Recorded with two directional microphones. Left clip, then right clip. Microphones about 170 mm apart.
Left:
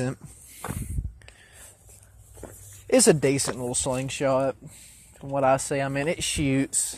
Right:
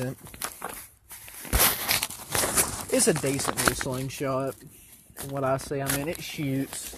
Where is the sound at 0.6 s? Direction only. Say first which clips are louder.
Left 4 dB; 50° right (ahead or behind).